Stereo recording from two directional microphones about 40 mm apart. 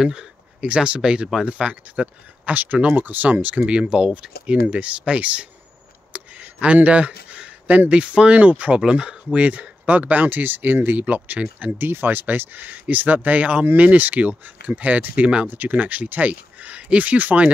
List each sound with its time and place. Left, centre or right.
0.0 s a sound: centre
0.7 s speech: right
2.5 s speech: right
6.1 s a sound: right
7.9 s speech: right
11.8 s speech: right